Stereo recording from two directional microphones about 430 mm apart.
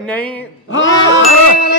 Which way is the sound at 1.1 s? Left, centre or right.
Left.